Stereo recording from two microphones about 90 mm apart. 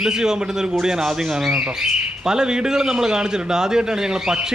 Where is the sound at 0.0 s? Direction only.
5° right (ahead or behind).